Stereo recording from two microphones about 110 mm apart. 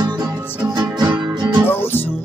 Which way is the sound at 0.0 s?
40° right (ahead or behind).